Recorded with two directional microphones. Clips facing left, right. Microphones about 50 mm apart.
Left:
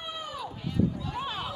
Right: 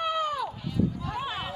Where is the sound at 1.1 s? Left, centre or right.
Centre.